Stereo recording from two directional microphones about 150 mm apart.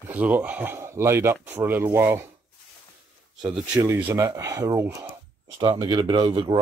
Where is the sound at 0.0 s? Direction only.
10° right (ahead or behind).